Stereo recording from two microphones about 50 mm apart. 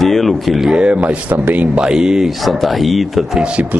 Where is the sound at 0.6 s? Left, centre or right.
Centre.